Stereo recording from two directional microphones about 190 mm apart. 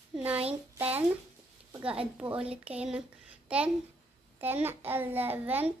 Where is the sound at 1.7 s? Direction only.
10° right (ahead or behind).